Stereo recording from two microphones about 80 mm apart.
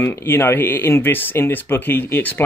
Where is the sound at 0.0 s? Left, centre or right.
Left.